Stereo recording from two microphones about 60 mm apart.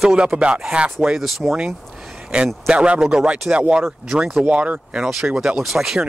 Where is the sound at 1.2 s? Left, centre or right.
Centre.